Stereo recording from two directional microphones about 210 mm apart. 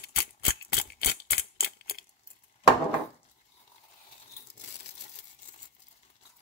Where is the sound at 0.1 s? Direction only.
50° left (ahead or behind).